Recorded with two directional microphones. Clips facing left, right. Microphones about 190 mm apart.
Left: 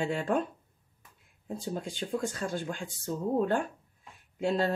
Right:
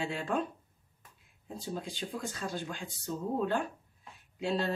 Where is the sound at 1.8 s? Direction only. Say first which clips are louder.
Left 7 dB; 50° left (ahead or behind).